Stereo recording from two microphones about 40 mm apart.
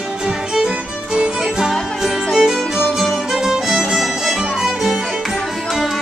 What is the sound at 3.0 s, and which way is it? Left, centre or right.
Music, centre.